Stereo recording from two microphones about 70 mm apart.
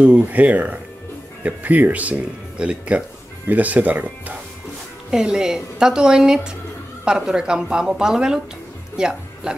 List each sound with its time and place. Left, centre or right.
0.0 s speech: centre
5.1 s a woman's voice: centre
8.9 s music: centre